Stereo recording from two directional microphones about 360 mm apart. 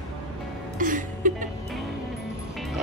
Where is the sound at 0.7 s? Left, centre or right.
Right.